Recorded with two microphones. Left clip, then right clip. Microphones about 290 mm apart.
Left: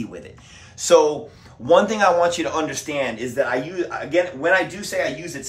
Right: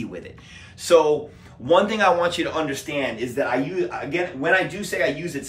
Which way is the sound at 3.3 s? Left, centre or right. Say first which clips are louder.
Left 2 dB; left.